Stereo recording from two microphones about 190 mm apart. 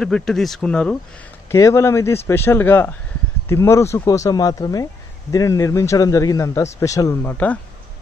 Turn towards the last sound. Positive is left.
turn(degrees=10)  # may be behind; listen again after turning